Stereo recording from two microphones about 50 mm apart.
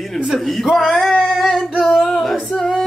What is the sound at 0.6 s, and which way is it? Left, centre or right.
Speech, centre.